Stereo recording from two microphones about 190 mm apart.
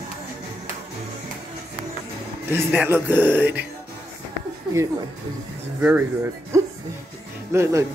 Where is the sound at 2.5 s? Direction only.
10° right (ahead or behind).